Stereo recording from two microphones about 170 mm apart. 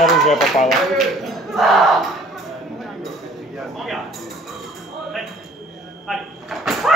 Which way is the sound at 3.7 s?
Centre (ahead or behind).